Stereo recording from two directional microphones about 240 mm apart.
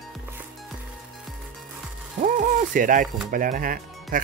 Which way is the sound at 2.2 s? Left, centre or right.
Right.